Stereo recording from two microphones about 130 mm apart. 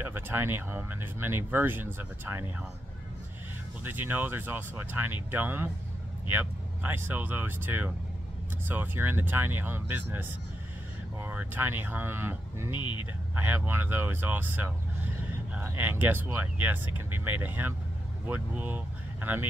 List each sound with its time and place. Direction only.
0.0 s speech: 15° right (ahead or behind)
3.8 s speech: 15° right (ahead or behind)
12.7 s speech: 35° left (ahead or behind)
13.3 s speech: 15° right (ahead or behind)